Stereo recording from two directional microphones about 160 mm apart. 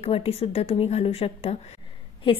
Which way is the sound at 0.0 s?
40° left (ahead or behind).